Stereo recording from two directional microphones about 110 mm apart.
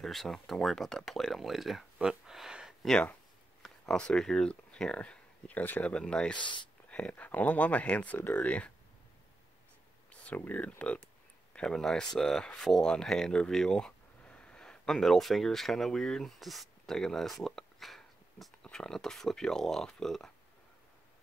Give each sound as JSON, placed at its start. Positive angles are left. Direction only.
{"t": 0.0, "sound": "speech", "side_deg": 0}
{"t": 2.9, "sound": "speech", "side_deg": 10}
{"t": 6.3, "sound": "speech", "side_deg": 45}
{"t": 6.9, "sound": "speech", "side_deg": 10}
{"t": 10.2, "sound": "speech", "side_deg": 15}